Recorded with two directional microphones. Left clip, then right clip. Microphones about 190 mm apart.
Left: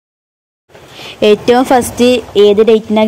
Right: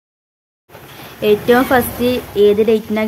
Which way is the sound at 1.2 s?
30° left (ahead or behind).